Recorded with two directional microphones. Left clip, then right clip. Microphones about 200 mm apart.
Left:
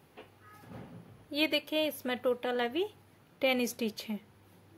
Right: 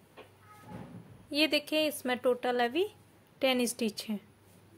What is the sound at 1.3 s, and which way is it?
A woman's voice, 10° right (ahead or behind).